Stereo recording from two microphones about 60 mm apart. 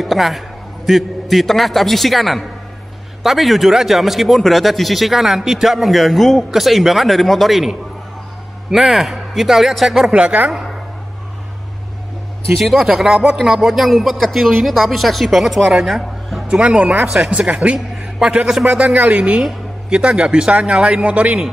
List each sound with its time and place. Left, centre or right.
0.0 s a man's voice: centre
10.1 s speech: centre
12.5 s a man's voice: centre
13.4 s speech: centre
16.4 s speech: centre
17.1 s a man's voice: centre